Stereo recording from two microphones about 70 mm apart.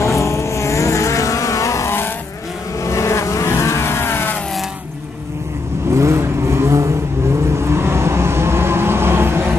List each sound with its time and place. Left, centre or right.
0.0 s vehicle: left
5.9 s vehicle: right